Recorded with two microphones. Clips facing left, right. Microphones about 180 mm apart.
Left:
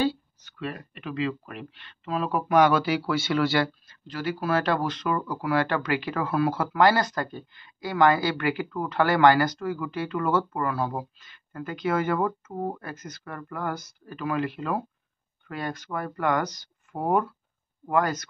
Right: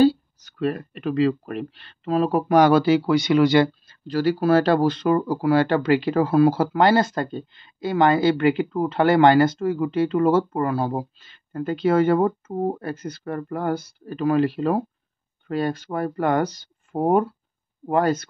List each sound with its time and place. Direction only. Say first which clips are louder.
0.0 s speech: right 9 dB; 40° right (ahead or behind); by 3.7 s 20° right (ahead or behind)
3.8 s speech: right 9 dB; 35° right (ahead or behind)